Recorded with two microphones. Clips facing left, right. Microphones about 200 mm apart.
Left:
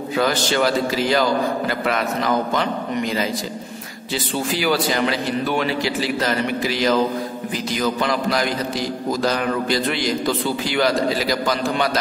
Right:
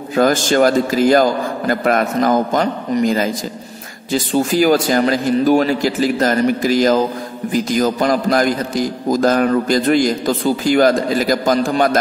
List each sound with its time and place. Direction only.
0.1 s a man's voice: 45° right (ahead or behind)